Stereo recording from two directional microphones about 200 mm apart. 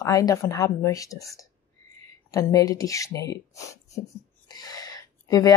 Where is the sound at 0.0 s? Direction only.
15° left (ahead or behind).